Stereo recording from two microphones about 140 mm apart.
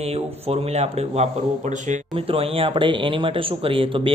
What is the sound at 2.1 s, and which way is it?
A man's voice, 40° right (ahead or behind).